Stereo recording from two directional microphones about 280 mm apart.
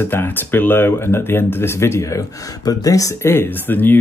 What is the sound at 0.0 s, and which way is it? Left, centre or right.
Speech, centre.